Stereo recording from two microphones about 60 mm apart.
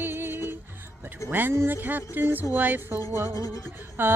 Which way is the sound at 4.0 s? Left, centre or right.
Right.